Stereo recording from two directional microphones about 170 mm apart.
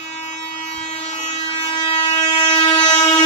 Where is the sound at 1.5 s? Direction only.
35° left (ahead or behind).